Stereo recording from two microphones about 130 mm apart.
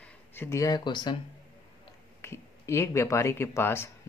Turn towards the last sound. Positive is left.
turn(degrees=20)  # may be behind; listen again after turning